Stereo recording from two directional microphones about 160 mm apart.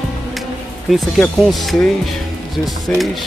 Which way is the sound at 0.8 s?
Centre (ahead or behind).